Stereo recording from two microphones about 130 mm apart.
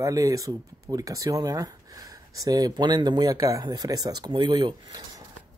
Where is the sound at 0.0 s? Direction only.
25° right (ahead or behind).